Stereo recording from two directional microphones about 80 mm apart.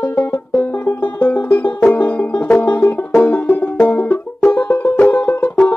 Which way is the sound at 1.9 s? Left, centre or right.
Left.